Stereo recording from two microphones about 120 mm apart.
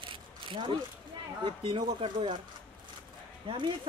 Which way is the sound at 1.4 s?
45° right (ahead or behind).